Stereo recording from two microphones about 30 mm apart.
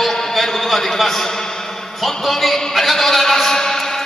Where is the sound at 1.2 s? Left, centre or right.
Centre.